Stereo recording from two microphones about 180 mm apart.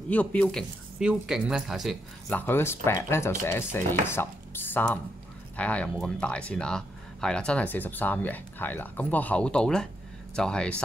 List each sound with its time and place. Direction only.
0.1 s speech: 5° left (ahead or behind)